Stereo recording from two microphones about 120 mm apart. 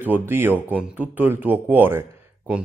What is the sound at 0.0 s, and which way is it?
Speech, 15° right (ahead or behind).